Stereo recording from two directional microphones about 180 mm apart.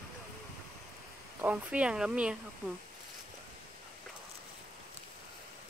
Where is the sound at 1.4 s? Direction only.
5° right (ahead or behind).